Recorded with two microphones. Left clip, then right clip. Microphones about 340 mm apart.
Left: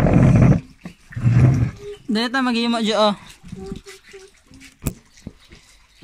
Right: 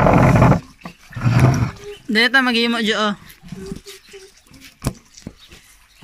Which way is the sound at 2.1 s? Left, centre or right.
Centre.